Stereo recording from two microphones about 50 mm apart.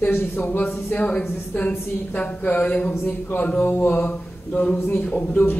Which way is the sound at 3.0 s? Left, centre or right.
Left.